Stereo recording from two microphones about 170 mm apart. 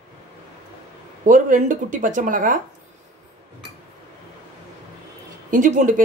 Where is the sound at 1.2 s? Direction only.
50° right (ahead or behind).